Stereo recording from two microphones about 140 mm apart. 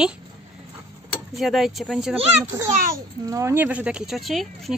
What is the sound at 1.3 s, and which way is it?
Speech, centre (ahead or behind).